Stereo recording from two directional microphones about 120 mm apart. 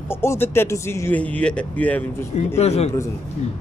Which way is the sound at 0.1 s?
20° left (ahead or behind).